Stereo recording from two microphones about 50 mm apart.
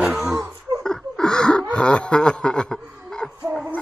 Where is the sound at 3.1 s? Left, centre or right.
Centre.